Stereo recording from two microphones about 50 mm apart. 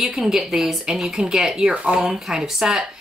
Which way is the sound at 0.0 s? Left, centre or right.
Centre.